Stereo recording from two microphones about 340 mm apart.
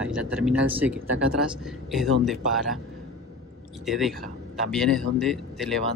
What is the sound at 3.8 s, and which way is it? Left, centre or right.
Speech, centre.